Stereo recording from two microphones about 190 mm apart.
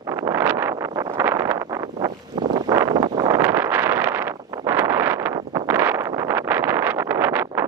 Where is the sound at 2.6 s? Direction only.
20° right (ahead or behind).